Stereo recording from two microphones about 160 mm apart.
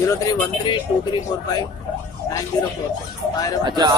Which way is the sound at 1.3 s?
25° left (ahead or behind).